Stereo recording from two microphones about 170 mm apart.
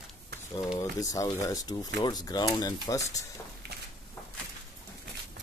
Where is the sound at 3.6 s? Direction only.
75° right (ahead or behind).